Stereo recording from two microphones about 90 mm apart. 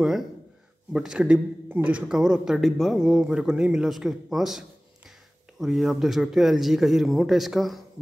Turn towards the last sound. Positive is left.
turn(degrees=0)  # may be behind; listen again after turning